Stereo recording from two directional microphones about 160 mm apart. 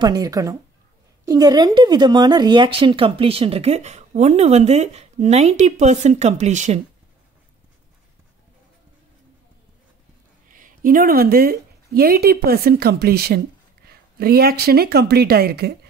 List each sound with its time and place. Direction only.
0.0 s a woman's voice: 25° right (ahead or behind); by 6.8 s 45° right (ahead or behind)
10.5 s speech: 60° right (ahead or behind); by 15.7 s 80° right